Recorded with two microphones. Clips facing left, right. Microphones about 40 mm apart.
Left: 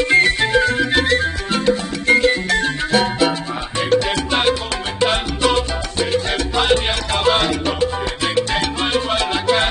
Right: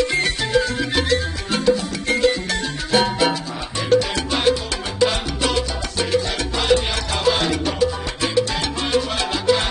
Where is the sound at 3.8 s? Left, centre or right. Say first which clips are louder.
Left 1 dB; left.